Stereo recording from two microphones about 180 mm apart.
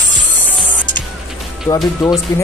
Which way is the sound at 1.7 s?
15° left (ahead or behind).